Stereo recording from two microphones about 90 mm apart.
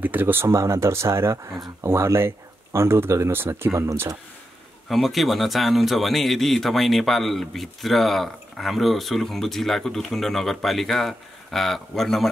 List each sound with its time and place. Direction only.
0.0 s speech: 20° right (ahead or behind)
4.8 s speech: centre (ahead or behind)